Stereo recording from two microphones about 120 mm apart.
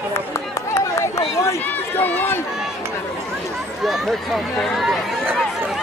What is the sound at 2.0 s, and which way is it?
Run, 15° left (ahead or behind).